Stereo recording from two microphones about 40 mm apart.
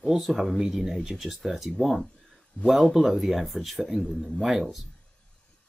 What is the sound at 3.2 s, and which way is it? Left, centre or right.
Speech, centre.